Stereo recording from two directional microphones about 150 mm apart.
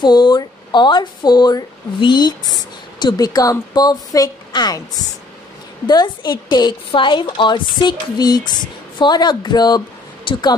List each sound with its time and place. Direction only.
0.0 s speech: 30° left (ahead or behind)